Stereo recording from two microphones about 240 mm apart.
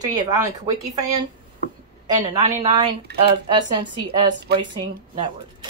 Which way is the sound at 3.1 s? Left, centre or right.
Right.